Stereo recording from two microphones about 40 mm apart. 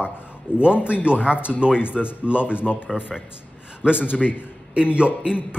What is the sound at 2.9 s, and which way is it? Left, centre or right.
Speech, centre.